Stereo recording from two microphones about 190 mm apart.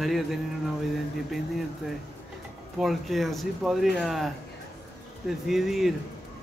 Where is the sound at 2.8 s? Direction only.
Centre (ahead or behind).